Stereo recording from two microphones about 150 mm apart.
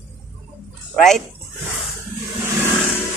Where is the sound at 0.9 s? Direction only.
Centre (ahead or behind).